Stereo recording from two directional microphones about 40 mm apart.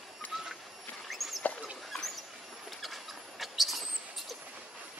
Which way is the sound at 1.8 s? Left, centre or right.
Centre.